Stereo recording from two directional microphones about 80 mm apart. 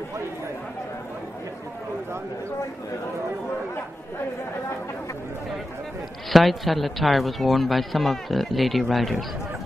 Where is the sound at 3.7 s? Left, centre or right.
Left.